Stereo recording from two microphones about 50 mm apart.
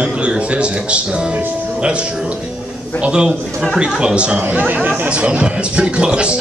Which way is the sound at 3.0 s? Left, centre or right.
Centre.